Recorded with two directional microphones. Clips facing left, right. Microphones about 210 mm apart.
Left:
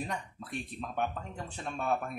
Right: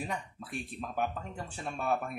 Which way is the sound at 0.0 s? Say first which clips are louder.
Even; 5° right (ahead or behind).